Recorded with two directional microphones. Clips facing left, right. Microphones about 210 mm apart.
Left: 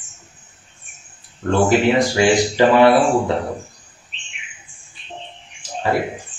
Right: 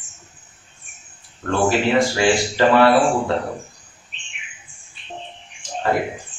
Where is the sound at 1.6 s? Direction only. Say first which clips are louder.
Even; 20° left (ahead or behind).